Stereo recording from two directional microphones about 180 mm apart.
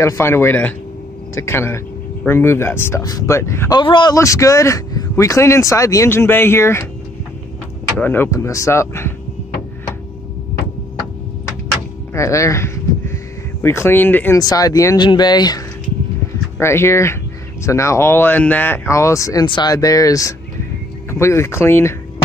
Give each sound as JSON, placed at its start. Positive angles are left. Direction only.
{"t": 0.0, "sound": "speech", "side_deg": 15}
{"t": 8.0, "sound": "speech", "side_deg": 10}
{"t": 12.1, "sound": "speech", "side_deg": 15}